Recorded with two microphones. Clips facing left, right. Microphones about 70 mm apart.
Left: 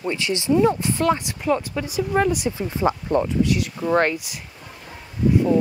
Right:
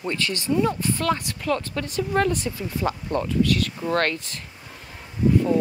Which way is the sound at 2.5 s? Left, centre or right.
Left.